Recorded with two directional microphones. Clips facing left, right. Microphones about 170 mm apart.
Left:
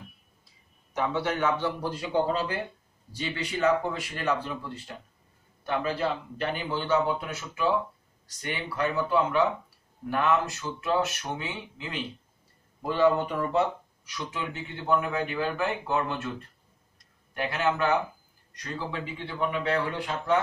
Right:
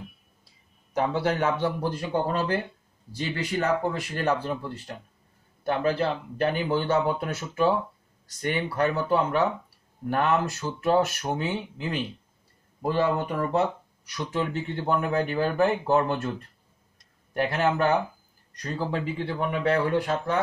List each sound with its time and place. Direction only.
0.9 s speech: 35° right (ahead or behind)
5.7 s speech: 45° right (ahead or behind)
12.8 s speech: 45° right (ahead or behind)
17.3 s speech: 40° right (ahead or behind)